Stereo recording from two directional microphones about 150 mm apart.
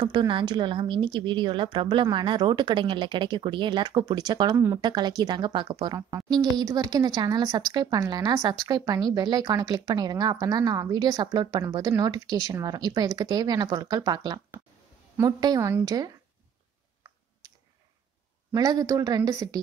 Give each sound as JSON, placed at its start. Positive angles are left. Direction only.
{"t": 0.0, "sound": "a woman's voice", "side_deg": -30}
{"t": 18.5, "sound": "a woman's voice", "side_deg": -25}